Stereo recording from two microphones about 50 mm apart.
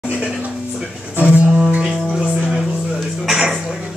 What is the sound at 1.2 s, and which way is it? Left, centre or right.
Music, right.